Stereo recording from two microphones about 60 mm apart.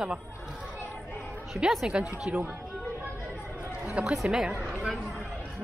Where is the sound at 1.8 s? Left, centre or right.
Centre.